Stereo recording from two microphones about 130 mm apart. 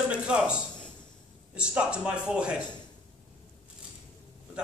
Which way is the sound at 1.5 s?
10° right (ahead or behind).